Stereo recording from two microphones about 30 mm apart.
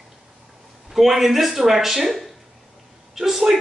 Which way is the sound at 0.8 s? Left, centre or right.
Centre.